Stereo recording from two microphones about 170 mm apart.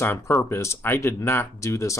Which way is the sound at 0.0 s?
15° left (ahead or behind).